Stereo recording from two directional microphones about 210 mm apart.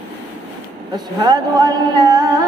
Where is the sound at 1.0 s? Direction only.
20° right (ahead or behind).